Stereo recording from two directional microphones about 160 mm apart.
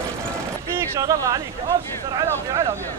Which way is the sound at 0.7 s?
20° right (ahead or behind).